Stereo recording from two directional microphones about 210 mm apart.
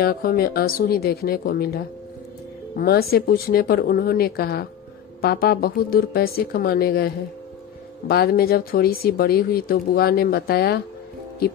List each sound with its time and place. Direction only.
0.0 s speech: 45° left (ahead or behind)
8.1 s speech: 50° left (ahead or behind)